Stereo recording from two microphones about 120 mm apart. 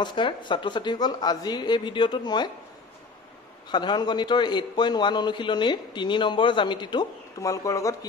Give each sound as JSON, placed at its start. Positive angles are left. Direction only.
{"t": 0.0, "sound": "a man's voice", "side_deg": 40}
{"t": 3.7, "sound": "a man's voice", "side_deg": 40}